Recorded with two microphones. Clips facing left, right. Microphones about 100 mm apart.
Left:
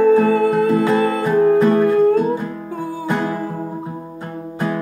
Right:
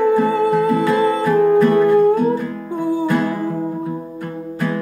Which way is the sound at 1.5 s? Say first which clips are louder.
Right 1 dB; 30° left (ahead or behind).